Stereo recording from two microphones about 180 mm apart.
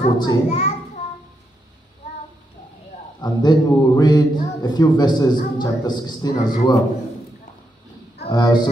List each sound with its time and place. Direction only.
0.0 s a man's voice: 25° left (ahead or behind)
0.5 s a child's voice: 35° left (ahead or behind)
3.2 s a man's voice: 20° left (ahead or behind)
8.3 s a man's voice: 20° left (ahead or behind)